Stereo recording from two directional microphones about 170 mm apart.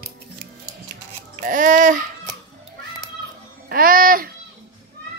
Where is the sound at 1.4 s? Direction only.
55° right (ahead or behind).